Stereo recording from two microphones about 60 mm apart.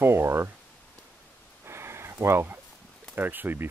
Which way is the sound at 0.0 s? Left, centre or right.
Right.